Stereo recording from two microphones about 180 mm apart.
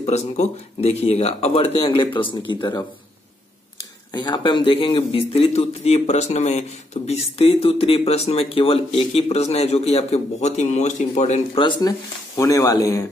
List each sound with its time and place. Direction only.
0.0 s speech: 35° left (ahead or behind)
4.1 s speech: 25° left (ahead or behind); by 11.6 s 40° left (ahead or behind)
12.4 s speech: 20° left (ahead or behind)